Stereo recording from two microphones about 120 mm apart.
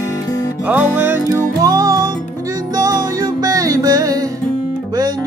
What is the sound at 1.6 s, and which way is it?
Music, 30° right (ahead or behind).